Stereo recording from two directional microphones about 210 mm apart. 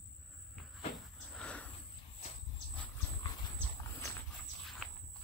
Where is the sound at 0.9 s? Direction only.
5° left (ahead or behind).